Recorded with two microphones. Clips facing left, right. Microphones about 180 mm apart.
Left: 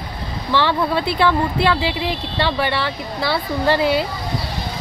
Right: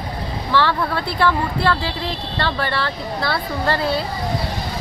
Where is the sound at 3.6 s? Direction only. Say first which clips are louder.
Left 4 dB; 20° left (ahead or behind).